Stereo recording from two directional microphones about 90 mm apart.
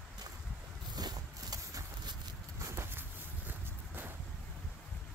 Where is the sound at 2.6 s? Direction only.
30° right (ahead or behind).